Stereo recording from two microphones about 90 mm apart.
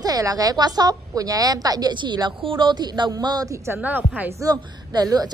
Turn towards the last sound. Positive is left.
turn(degrees=-45)  # may be behind; listen again after turning